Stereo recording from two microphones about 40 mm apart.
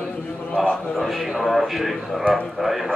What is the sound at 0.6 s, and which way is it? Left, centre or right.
Speech, left.